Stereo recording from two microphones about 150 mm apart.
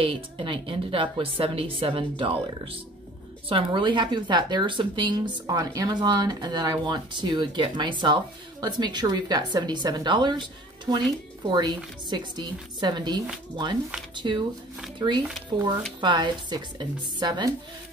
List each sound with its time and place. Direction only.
0.0 s a woman's voice: 35° right (ahead or behind)
11.4 s a woman's voice: 30° right (ahead or behind)